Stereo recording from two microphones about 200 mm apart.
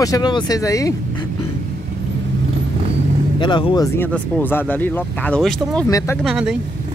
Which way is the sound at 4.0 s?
10° left (ahead or behind).